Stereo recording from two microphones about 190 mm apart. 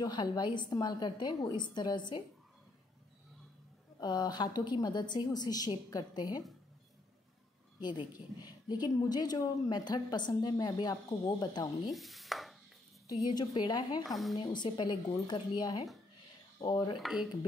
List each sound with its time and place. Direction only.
0.0 s speech: 20° left (ahead or behind)
4.0 s speech: 20° left (ahead or behind)
7.8 s speech: 20° left (ahead or behind)
11.8 s chopping: centre (ahead or behind)
13.3 s speech: 20° left (ahead or behind)
14.0 s a woman's voice: centre (ahead or behind)
14.3 s speech: 25° left (ahead or behind)
17.0 s a woman's voice: centre (ahead or behind)